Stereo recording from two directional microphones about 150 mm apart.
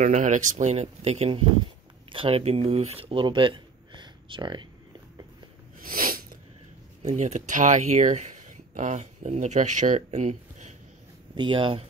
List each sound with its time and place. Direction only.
0.0 s speech: 55° right (ahead or behind); by 4.6 s 30° right (ahead or behind)
5.8 s sneeze: 70° right (ahead or behind)
7.0 s speech: 50° right (ahead or behind)
11.3 s speech: 30° right (ahead or behind)